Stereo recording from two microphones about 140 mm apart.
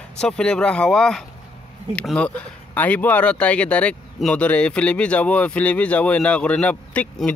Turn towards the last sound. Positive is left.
turn(degrees=10)  # may be behind; listen again after turning